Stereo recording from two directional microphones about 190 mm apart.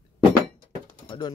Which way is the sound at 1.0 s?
25° left (ahead or behind).